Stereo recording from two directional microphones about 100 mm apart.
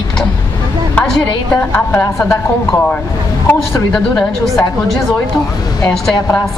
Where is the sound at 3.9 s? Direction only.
5° left (ahead or behind).